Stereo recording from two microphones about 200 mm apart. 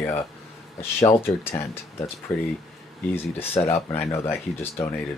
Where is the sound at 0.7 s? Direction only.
10° left (ahead or behind).